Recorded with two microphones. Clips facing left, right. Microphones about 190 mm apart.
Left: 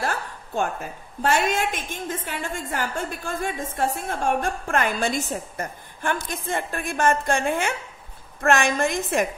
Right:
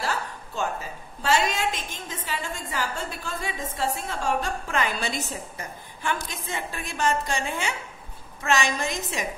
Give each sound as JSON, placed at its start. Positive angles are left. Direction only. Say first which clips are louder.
{"t": 0.0, "sound": "a woman's voice", "louder": "left 2 dB", "side_deg": 55}